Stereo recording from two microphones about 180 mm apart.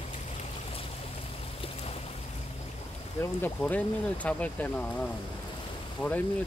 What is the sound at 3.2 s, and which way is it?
Speech, 10° left (ahead or behind).